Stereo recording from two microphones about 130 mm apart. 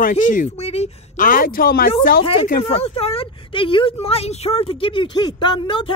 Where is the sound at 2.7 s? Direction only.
50° left (ahead or behind).